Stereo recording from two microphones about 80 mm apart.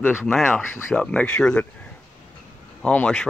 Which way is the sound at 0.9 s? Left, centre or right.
Centre.